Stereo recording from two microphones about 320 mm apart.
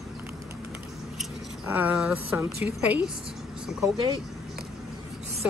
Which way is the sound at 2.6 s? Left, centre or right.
Centre.